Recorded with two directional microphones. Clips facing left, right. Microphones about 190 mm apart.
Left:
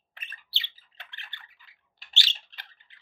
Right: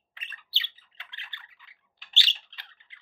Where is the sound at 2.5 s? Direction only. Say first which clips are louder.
Left 2 dB; 40° left (ahead or behind).